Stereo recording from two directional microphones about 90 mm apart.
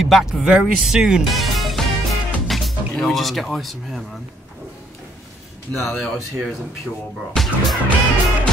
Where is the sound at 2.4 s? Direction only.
Centre (ahead or behind).